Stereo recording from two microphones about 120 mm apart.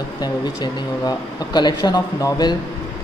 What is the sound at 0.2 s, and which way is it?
Speech, 35° left (ahead or behind).